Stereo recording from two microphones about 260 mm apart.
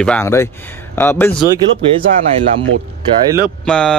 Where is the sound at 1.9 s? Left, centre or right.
Centre.